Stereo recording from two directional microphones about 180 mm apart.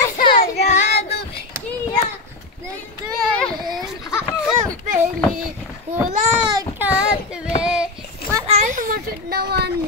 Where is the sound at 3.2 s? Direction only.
Centre (ahead or behind).